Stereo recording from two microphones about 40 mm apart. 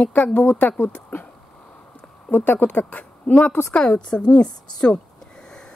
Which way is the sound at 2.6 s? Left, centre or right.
Left.